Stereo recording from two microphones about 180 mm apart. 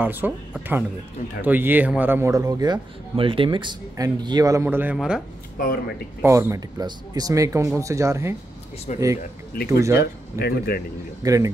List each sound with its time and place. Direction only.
0.0 s a man's voice: 10° right (ahead or behind)
6.2 s speech: 15° right (ahead or behind)
8.9 s speech: 45° left (ahead or behind)
9.7 s speech: 15° right (ahead or behind)
10.4 s a man's voice: 55° left (ahead or behind)
11.2 s a man's voice: 20° right (ahead or behind)